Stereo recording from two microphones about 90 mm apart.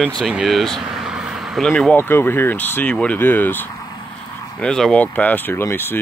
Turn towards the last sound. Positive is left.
turn(degrees=25)  # may be behind; listen again after turning